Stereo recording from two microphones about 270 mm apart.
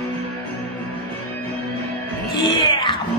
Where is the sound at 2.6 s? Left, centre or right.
Centre.